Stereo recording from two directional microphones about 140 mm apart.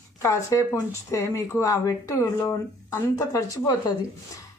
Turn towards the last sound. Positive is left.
turn(degrees=25)  # may be behind; listen again after turning